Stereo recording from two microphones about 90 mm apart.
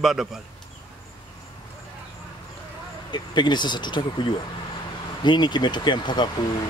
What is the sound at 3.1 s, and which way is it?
Speech, 55° left (ahead or behind).